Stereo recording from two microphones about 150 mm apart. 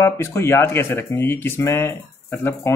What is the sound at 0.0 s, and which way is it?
Speech, 15° left (ahead or behind).